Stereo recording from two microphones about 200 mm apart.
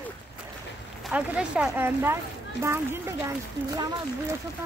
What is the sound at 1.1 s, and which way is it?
Speech, 5° right (ahead or behind).